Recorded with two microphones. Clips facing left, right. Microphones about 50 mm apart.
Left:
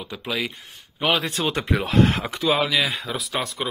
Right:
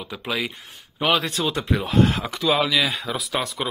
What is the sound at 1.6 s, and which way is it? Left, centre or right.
Speech, left.